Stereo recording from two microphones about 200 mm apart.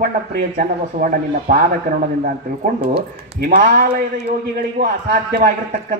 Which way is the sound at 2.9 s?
50° right (ahead or behind).